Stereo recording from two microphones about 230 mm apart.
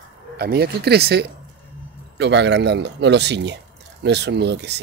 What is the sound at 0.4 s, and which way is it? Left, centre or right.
Speech, right.